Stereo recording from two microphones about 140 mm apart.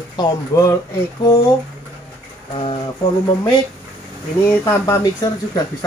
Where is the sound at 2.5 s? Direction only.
40° left (ahead or behind).